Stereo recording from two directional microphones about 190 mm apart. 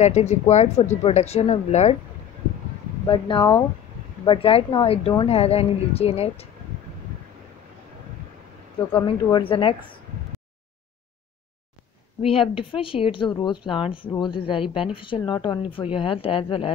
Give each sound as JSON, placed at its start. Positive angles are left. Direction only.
{"t": 0.0, "sound": "a woman's voice", "side_deg": 35}
{"t": 3.1, "sound": "a woman's voice", "side_deg": 25}
{"t": 8.9, "sound": "speech", "side_deg": 25}
{"t": 12.2, "sound": "speech", "side_deg": 30}